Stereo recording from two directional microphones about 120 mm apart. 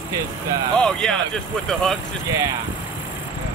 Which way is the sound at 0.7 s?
5° left (ahead or behind).